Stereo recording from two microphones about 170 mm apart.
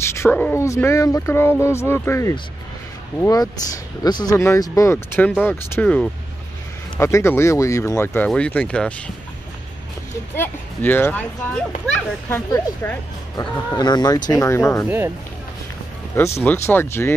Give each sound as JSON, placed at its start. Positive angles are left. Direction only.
{"t": 0.0, "sound": "speech", "side_deg": 15}
{"t": 7.0, "sound": "speech", "side_deg": 15}
{"t": 10.3, "sound": "speech", "side_deg": 10}
{"t": 12.3, "sound": "speech", "side_deg": 15}
{"t": 16.3, "sound": "speech", "side_deg": 15}